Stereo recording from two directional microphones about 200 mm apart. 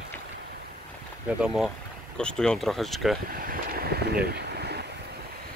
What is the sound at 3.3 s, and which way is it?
Boat, 45° right (ahead or behind).